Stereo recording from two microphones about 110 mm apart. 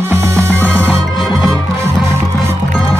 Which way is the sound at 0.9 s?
Centre (ahead or behind).